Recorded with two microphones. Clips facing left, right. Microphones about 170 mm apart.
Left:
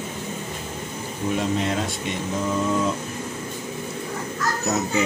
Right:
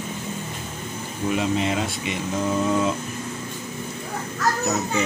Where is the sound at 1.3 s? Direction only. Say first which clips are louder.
Right 1 dB; 5° right (ahead or behind).